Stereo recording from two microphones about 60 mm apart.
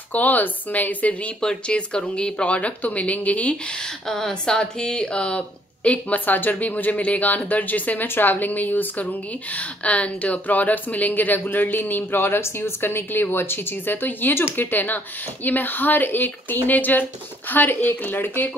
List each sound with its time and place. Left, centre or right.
0.1 s speech: left
1.4 s speech: centre
3.7 s speech: centre; by 18.5 s left